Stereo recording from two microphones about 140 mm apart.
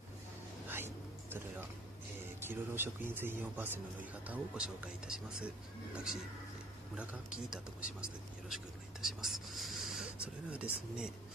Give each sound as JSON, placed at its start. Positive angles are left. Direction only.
{"t": 0.7, "sound": "music", "side_deg": -15}
{"t": 2.4, "sound": "a man's voice", "side_deg": -15}
{"t": 7.0, "sound": "speech", "side_deg": -5}